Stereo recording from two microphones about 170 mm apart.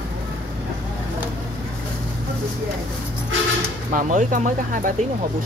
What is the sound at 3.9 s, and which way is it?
Speech, 50° right (ahead or behind).